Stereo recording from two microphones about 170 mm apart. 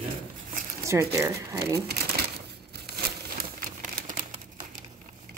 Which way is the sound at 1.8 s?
70° right (ahead or behind).